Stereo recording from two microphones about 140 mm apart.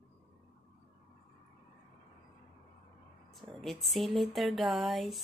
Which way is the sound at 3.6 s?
Centre (ahead or behind).